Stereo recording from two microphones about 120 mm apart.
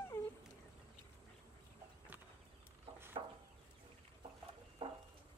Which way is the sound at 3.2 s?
45° right (ahead or behind).